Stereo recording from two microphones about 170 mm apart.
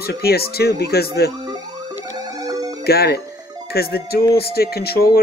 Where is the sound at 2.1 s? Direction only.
20° right (ahead or behind).